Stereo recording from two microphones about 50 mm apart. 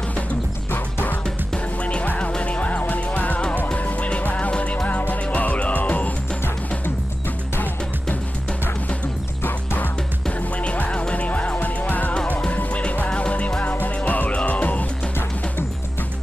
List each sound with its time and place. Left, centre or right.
0.7 s music: left
1.8 s music: left
7.5 s music: left
10.6 s music: left